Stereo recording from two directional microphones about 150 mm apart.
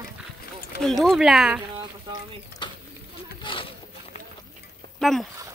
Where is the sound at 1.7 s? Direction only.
35° right (ahead or behind).